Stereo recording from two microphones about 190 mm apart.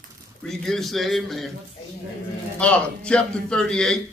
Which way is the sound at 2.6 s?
5° left (ahead or behind).